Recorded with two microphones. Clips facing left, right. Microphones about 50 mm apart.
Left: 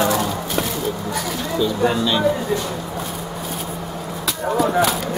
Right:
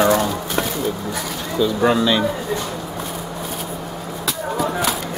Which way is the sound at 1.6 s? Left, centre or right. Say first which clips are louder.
Right 3 dB; centre.